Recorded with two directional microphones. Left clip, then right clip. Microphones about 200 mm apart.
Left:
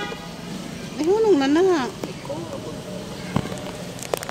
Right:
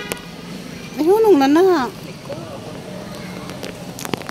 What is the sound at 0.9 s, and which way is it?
Speech, 30° right (ahead or behind).